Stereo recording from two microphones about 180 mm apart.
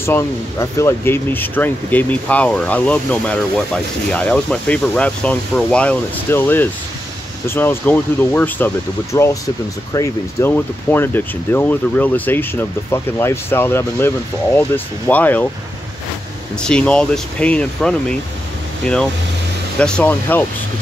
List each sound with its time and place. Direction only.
0.0 s speech: 15° left (ahead or behind)
16.5 s speech: 5° left (ahead or behind)